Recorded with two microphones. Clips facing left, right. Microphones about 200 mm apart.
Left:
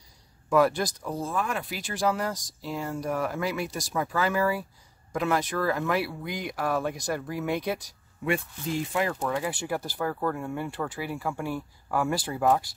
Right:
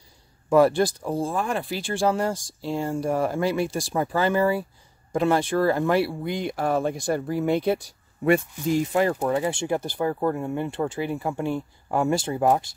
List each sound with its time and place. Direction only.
0.5 s speech: 30° right (ahead or behind)
9.3 s speech: 25° right (ahead or behind)